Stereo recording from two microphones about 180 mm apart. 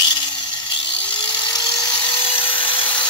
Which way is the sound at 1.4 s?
25° left (ahead or behind).